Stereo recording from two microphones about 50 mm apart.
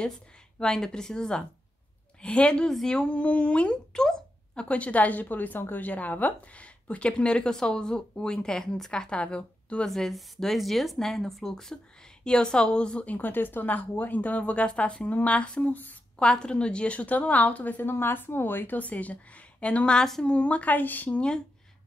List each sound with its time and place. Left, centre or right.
0.6 s a woman's voice: centre
4.6 s a woman's voice: left
9.8 s speech: centre
13.1 s a woman's voice: left
15.7 s speech: left
16.2 s a woman's voice: centre
17.8 s speech: left
18.8 s a woman's voice: left
20.0 s speech: centre
20.2 s speech: left